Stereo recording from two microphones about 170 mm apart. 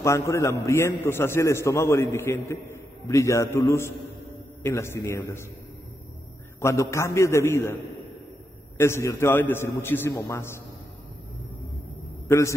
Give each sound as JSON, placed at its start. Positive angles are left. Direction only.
{"t": 0.0, "sound": "a man's voice", "side_deg": 15}
{"t": 6.6, "sound": "a man's voice", "side_deg": 15}
{"t": 8.7, "sound": "a man's voice", "side_deg": 15}
{"t": 12.3, "sound": "a man's voice", "side_deg": 15}